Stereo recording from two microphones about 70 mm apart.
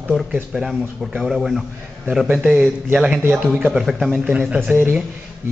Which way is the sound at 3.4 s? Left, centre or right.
Centre.